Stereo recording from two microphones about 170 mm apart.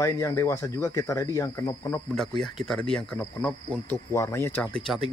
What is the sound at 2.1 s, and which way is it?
Speech, 5° left (ahead or behind).